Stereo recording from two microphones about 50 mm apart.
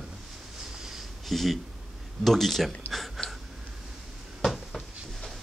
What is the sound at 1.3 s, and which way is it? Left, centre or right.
Speech, centre.